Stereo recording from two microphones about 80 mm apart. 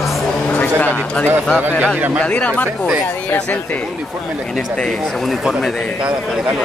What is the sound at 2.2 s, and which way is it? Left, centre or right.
Speech, centre.